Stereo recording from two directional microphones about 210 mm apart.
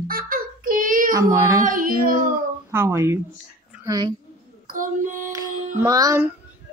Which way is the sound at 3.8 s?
20° right (ahead or behind).